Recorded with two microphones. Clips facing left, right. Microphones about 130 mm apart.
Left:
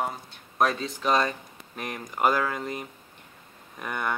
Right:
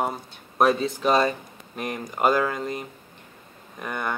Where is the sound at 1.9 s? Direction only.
25° right (ahead or behind).